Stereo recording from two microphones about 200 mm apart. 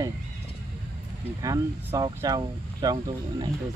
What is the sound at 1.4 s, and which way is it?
Speech, 15° right (ahead or behind).